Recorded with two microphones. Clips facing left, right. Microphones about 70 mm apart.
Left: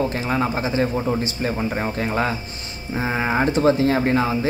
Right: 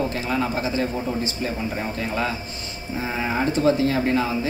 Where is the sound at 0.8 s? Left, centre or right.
Left.